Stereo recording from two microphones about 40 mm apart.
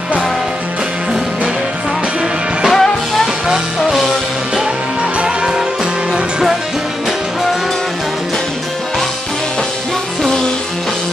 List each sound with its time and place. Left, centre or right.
2.7 s music: centre
5.2 s music: right